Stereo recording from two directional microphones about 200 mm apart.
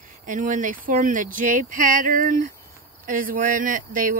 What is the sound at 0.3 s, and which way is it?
Speech, 40° right (ahead or behind).